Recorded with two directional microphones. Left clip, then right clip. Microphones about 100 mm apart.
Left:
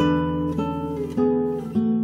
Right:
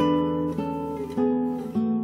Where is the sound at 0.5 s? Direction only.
15° right (ahead or behind).